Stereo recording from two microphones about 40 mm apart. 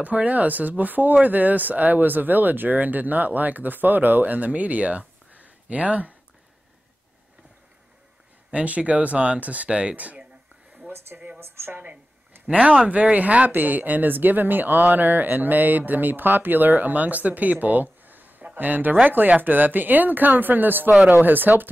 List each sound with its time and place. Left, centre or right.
0.0 s speech: right
8.5 s speech: right
9.7 s speech: right
9.9 s speech: right
11.3 s a woman's voice: right
12.4 s speech: right